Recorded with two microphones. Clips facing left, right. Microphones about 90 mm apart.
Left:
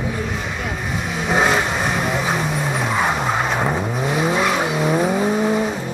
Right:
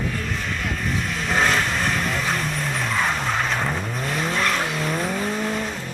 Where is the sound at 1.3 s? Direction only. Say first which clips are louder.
Left 4 dB; 10° left (ahead or behind).